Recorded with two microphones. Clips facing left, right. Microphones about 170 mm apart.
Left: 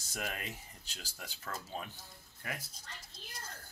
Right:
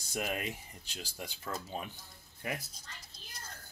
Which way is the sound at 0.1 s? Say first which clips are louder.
Right 5 dB; 15° right (ahead or behind).